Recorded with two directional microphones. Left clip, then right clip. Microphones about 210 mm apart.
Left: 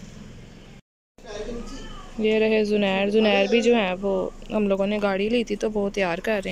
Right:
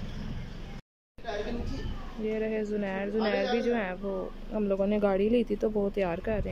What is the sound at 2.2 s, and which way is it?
Speech, 5° left (ahead or behind).